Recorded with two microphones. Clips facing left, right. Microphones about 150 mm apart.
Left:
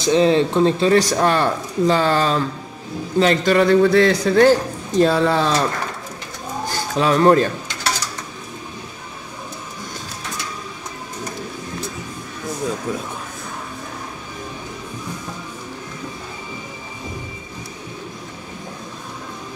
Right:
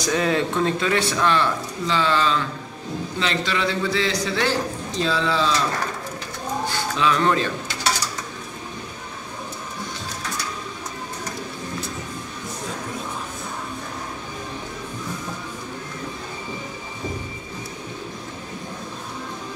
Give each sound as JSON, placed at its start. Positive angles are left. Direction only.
{"t": 0.0, "sound": "a man's voice", "side_deg": 25}
{"t": 6.7, "sound": "speech", "side_deg": 45}